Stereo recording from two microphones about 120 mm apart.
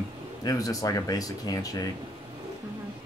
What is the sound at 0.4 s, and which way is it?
Speech, 30° left (ahead or behind).